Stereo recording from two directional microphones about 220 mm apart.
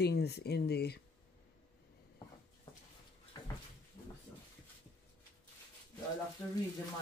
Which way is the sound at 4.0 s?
25° left (ahead or behind).